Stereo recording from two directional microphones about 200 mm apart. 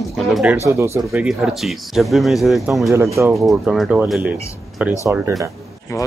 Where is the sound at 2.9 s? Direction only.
15° right (ahead or behind).